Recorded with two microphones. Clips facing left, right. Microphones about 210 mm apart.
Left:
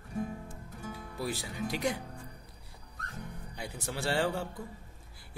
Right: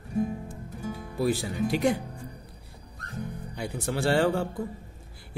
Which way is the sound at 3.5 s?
55° right (ahead or behind).